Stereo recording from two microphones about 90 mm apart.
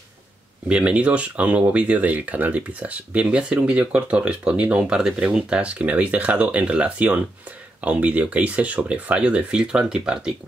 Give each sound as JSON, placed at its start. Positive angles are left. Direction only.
{"t": 0.7, "sound": "speech", "side_deg": -15}